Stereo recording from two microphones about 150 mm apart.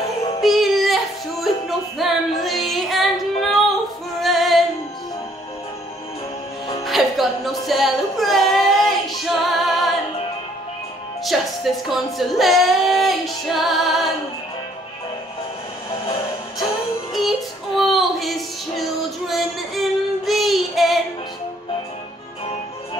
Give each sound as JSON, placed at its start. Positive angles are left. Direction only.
{"t": 0.4, "sound": "music", "side_deg": 0}
{"t": 6.8, "sound": "music", "side_deg": 0}
{"t": 11.2, "sound": "speech", "side_deg": 0}
{"t": 17.1, "sound": "child singing", "side_deg": 0}